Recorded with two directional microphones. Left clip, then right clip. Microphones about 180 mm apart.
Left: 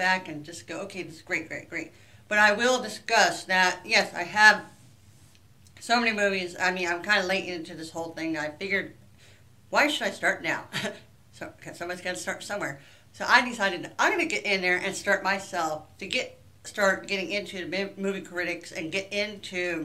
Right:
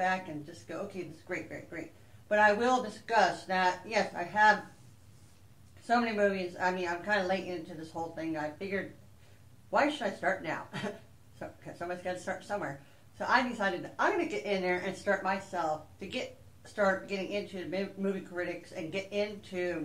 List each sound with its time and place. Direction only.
0.7 s speech: 10° left (ahead or behind)
5.9 s speech: 10° left (ahead or behind)
17.0 s speech: 15° left (ahead or behind)